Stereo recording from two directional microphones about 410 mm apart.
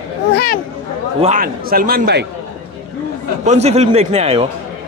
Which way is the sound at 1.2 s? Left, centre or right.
Centre.